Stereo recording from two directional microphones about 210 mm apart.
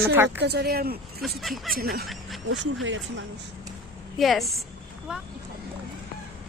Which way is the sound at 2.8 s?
65° right (ahead or behind).